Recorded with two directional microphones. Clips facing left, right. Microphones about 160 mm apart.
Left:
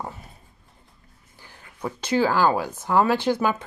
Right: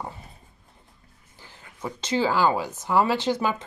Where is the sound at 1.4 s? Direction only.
15° left (ahead or behind).